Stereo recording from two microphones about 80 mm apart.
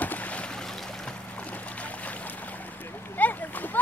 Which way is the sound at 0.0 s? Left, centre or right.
Centre.